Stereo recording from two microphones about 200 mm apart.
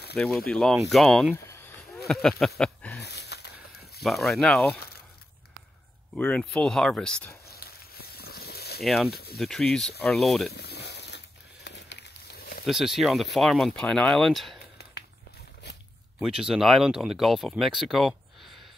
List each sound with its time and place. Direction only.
0.2 s speech: 5° left (ahead or behind)
2.0 s a sound: centre (ahead or behind)
3.0 s a sound: 55° left (ahead or behind)
4.0 s speech: centre (ahead or behind)
6.1 s speech: 5° left (ahead or behind)
7.4 s a sound: 50° left (ahead or behind)
8.8 s speech: centre (ahead or behind)
9.1 s speech: 50° left (ahead or behind)
9.4 s speech: 5° left (ahead or behind)
10.5 s a sound: 55° left (ahead or behind)
12.6 s speech: centre (ahead or behind)
16.2 s speech: 5° right (ahead or behind)